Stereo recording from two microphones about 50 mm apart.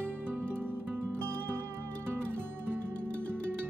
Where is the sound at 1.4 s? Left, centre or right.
Right.